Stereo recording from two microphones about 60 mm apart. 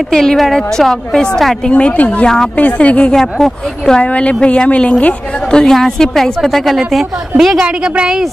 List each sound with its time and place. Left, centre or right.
0.1 s a woman's voice: centre
1.7 s a woman's voice: left
2.5 s a woman's voice: left
3.2 s a woman's voice: centre
4.0 s a woman's voice: left; by 7.6 s centre
7.6 s a woman's voice: centre